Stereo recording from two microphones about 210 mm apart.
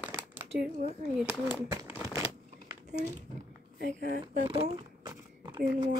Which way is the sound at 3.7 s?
40° right (ahead or behind).